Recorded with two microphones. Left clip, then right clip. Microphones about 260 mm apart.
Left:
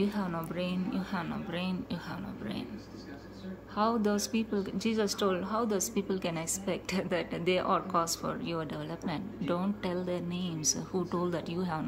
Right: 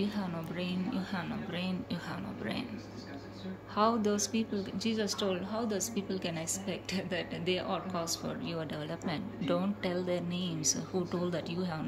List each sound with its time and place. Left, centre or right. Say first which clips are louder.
0.0 s a woman's voice: left 4 dB; centre
3.7 s a woman's voice: even; centre